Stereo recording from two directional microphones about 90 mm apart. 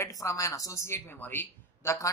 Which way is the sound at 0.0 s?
35° left (ahead or behind).